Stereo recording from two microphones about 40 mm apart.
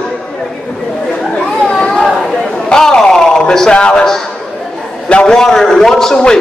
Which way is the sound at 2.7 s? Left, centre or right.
Centre.